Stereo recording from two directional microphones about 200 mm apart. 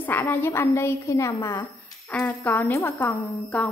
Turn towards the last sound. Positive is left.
turn(degrees=10)  # may be behind; listen again after turning